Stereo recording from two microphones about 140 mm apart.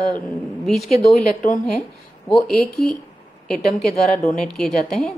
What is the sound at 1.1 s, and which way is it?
Speech, 65° left (ahead or behind).